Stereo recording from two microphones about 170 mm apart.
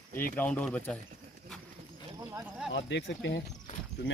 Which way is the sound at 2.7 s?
90° left.